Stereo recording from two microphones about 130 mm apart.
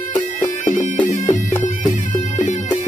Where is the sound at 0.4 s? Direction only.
75° left (ahead or behind).